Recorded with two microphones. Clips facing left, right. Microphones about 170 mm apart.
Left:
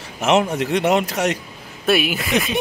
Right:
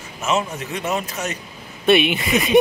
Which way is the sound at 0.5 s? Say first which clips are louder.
Left 7 dB; 75° left (ahead or behind).